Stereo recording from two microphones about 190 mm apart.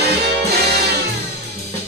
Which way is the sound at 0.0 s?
60° right (ahead or behind).